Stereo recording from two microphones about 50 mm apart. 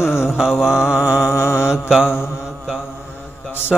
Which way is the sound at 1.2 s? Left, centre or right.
Left.